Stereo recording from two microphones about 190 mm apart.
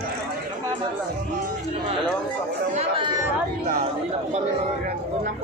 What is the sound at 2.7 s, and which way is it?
Chatter, 35° right (ahead or behind).